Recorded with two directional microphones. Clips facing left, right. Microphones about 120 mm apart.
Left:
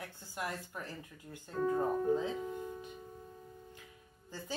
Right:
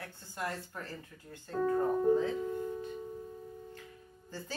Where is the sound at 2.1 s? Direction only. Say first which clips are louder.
Right 4 dB; 15° left (ahead or behind).